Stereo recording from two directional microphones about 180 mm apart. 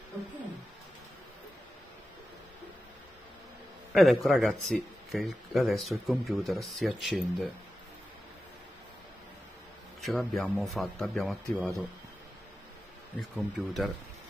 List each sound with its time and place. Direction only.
3.9 s speech: centre (ahead or behind)
10.0 s speech: centre (ahead or behind)
13.4 s speech: centre (ahead or behind)